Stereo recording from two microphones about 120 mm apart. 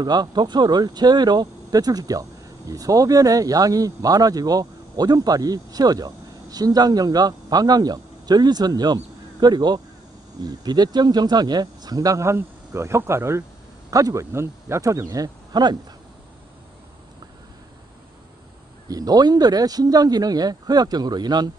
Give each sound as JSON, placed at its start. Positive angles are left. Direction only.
{"t": 0.0, "sound": "speech", "side_deg": -35}
{"t": 18.9, "sound": "speech", "side_deg": -30}